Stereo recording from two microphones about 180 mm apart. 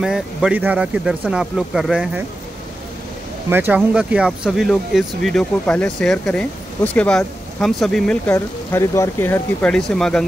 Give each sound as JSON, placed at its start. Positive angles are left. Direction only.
{"t": 0.0, "sound": "speech", "side_deg": -5}
{"t": 3.4, "sound": "speech", "side_deg": -10}